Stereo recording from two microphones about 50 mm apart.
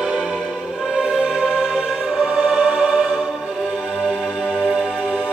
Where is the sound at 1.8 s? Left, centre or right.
Centre.